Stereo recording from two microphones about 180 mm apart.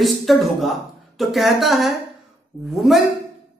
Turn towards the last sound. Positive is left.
turn(degrees=0)  # may be behind; listen again after turning